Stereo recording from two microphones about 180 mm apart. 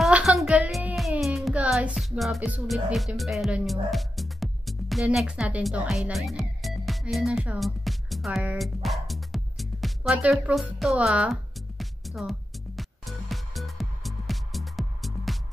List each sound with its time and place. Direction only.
0.0 s music: 5° right (ahead or behind)